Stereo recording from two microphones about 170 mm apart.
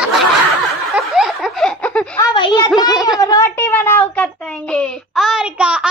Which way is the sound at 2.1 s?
25° left (ahead or behind).